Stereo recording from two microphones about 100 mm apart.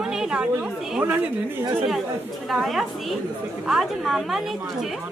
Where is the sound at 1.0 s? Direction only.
20° right (ahead or behind).